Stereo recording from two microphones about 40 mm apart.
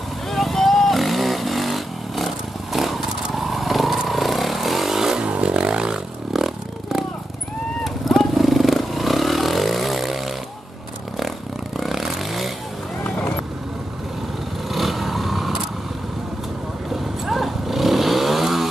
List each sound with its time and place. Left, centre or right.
0.3 s vehicle: centre
5.2 s vehicle: right
6.3 s a sound: centre
7.8 s vehicle: centre
14.7 s vehicle: centre
17.2 s vehicle: centre